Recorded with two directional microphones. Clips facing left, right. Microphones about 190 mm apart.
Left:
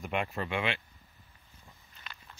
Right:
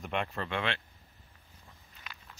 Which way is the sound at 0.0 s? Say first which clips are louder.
Left 1 dB; 5° left (ahead or behind).